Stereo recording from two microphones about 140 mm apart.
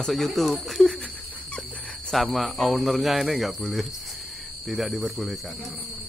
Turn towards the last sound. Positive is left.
turn(degrees=0)  # may be behind; listen again after turning